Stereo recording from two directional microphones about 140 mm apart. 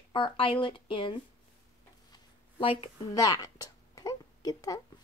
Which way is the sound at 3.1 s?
25° left (ahead or behind).